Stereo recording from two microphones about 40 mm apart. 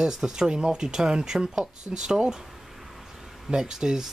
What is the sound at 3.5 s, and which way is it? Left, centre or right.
Speech, centre.